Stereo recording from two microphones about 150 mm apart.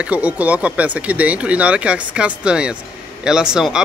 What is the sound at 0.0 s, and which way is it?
Speech, 10° right (ahead or behind).